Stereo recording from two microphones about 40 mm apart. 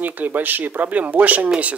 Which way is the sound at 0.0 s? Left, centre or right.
Right.